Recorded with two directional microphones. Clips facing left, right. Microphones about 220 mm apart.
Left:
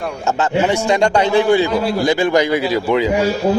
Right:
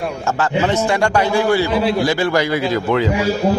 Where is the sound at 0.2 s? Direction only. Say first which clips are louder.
Left 2 dB; 20° left (ahead or behind).